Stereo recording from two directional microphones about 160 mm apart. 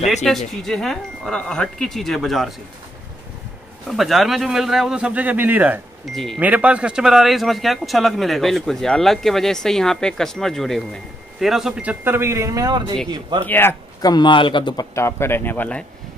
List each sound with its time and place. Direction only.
0.2 s speech: centre (ahead or behind)
3.9 s speech: centre (ahead or behind)
6.1 s speech: centre (ahead or behind); by 13.5 s 30° right (ahead or behind)
13.5 s speech: 15° left (ahead or behind)
14.0 s speech: 25° left (ahead or behind)
15.0 s speech: 15° left (ahead or behind)